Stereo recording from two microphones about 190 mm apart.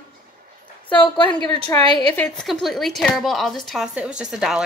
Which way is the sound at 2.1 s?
5° left (ahead or behind).